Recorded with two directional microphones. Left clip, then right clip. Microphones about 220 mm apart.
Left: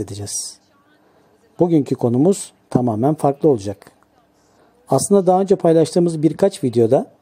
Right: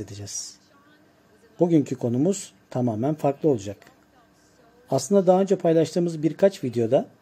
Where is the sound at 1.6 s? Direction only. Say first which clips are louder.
Left 5 dB; 30° left (ahead or behind).